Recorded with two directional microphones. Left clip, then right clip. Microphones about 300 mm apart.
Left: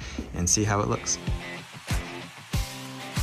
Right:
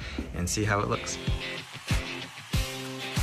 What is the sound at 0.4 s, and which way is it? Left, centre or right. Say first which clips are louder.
Speech: left 3 dB; centre.